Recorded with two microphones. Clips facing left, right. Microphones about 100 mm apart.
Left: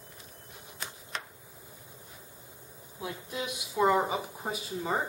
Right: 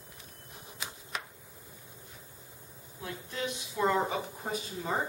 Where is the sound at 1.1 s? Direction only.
5° right (ahead or behind).